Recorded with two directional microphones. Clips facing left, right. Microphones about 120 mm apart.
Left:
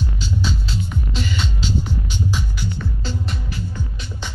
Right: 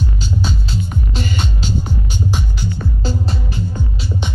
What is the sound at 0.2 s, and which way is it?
Music, 50° right (ahead or behind).